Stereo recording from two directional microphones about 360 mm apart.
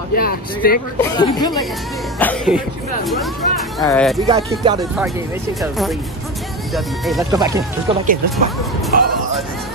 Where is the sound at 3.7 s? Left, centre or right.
Centre.